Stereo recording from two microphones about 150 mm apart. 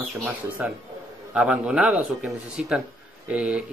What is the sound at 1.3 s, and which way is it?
Speech, 5° right (ahead or behind).